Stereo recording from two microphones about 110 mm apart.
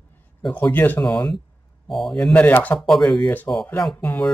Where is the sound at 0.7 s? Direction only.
20° left (ahead or behind).